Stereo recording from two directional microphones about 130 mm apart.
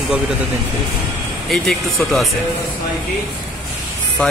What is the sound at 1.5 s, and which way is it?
Speech, centre (ahead or behind).